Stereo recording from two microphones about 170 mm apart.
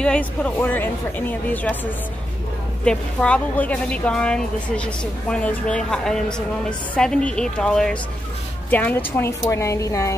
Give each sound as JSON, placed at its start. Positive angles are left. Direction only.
{"t": 0.0, "sound": "speech", "side_deg": 5}
{"t": 2.8, "sound": "a woman's voice", "side_deg": 5}